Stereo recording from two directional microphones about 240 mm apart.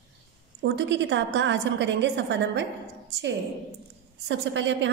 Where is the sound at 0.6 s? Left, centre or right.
Right.